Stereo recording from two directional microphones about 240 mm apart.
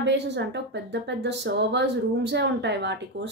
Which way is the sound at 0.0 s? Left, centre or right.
Right.